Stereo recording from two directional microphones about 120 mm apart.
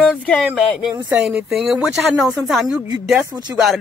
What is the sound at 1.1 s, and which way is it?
Speech, 10° right (ahead or behind).